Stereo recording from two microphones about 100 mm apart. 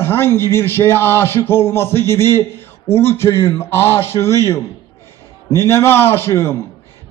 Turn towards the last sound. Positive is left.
turn(degrees=25)  # may be behind; listen again after turning